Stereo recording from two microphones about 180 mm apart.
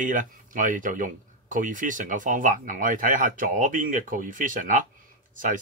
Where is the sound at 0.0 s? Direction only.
50° right (ahead or behind).